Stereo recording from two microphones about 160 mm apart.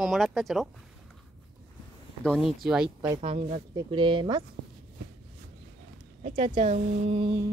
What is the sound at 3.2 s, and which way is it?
Speech, 40° right (ahead or behind).